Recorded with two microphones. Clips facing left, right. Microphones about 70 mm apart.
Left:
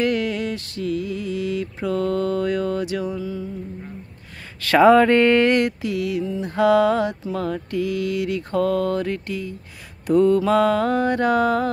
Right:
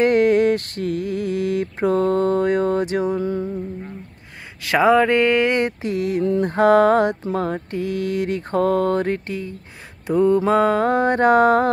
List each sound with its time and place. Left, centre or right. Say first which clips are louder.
0.0 s mantra: right 7 dB; right
4.6 s a sound: left 2 dB; centre
5.5 s mantra: left 1 dB; right
6.2 s mantra: right 7 dB; right
6.5 s mantra: right 2 dB; right